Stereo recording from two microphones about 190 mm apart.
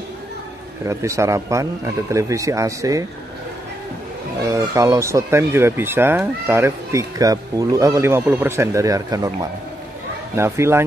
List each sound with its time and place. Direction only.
0.8 s speech: 15° right (ahead or behind)
4.5 s speech: 15° right (ahead or behind)